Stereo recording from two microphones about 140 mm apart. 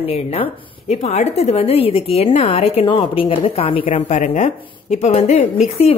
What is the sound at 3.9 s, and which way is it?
A woman's voice, 55° left (ahead or behind).